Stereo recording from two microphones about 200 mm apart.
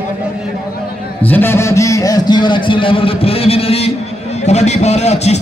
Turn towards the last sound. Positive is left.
turn(degrees=35)  # may be behind; listen again after turning